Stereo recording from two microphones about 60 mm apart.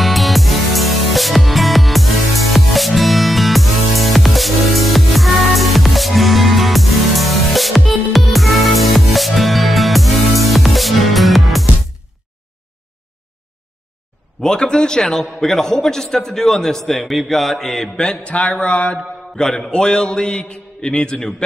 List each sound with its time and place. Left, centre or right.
0.0 s music: centre
14.4 s a man's voice: centre
15.4 s mantra: centre